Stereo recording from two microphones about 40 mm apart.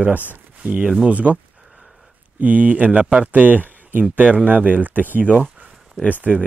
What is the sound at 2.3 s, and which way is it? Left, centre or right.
Speech, right.